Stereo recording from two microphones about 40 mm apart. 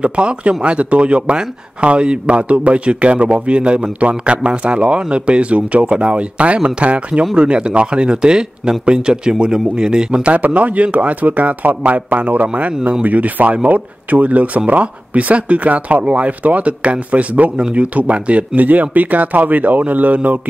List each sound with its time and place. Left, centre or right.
0.0 s speech: right
10.4 s speech: right